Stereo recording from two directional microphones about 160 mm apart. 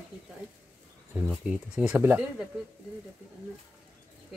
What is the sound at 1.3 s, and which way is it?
Speech, 5° right (ahead or behind).